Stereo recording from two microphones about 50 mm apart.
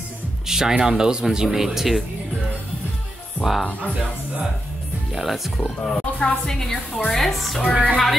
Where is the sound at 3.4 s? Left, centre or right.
Centre.